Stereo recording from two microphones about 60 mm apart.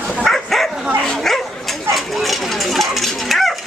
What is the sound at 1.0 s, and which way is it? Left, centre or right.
Speech, centre.